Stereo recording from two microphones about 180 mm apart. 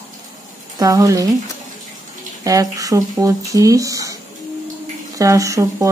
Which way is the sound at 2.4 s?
20° right (ahead or behind).